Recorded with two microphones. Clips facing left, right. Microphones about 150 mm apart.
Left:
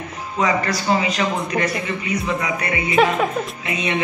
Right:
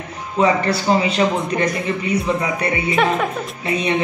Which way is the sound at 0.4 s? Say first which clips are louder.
Right 4 dB; 30° right (ahead or behind).